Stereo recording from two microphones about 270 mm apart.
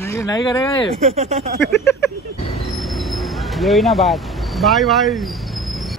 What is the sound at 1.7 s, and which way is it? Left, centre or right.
Speech, centre.